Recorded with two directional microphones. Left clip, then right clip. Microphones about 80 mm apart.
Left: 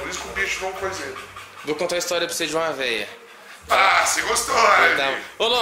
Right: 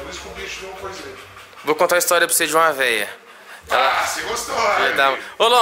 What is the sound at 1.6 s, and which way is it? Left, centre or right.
A man's voice, right.